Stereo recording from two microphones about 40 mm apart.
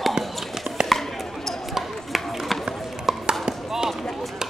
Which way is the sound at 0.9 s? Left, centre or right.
Centre.